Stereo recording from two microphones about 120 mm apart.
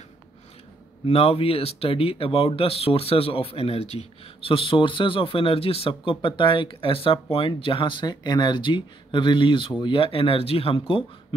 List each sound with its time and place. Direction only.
1.0 s speech: 55° left (ahead or behind)